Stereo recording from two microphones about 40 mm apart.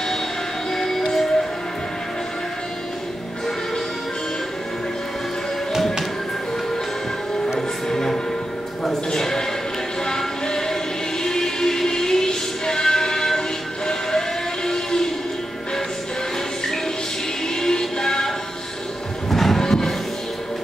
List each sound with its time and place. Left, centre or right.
0.7 s music: centre
7.9 s music: centre
9.1 s a sound: centre
10.0 s music: centre
13.8 s train: centre
17.6 s music: centre